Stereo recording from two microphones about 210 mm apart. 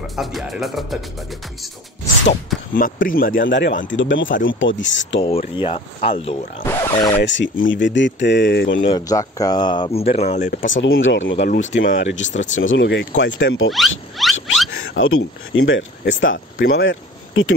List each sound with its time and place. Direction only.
0.1 s speech: centre (ahead or behind)
2.7 s speech: 40° left (ahead or behind)
3.4 s speech: 60° left (ahead or behind)
5.2 s speech: 25° left (ahead or behind)
6.6 s speech: 10° left (ahead or behind)
7.2 s speech: 60° left (ahead or behind)
8.9 s speech: 15° left (ahead or behind); by 10.6 s 35° left (ahead or behind)
10.6 s speech: 65° left (ahead or behind)
14.2 s a sound: centre (ahead or behind)
15.0 s speech: 75° left (ahead or behind)